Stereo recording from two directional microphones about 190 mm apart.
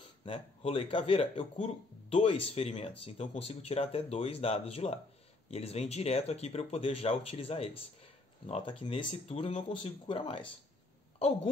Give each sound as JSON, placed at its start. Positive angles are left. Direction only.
{"t": 0.2, "sound": "speech", "side_deg": 30}